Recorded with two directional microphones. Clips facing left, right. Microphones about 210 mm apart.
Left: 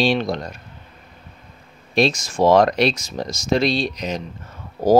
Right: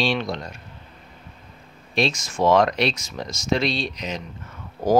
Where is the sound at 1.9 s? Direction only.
35° left (ahead or behind).